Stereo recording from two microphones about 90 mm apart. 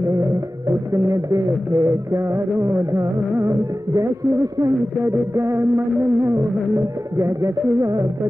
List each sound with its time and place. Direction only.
0.9 s music: 40° right (ahead or behind)